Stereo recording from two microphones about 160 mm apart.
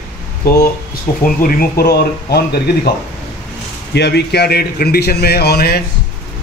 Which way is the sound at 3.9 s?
90° left.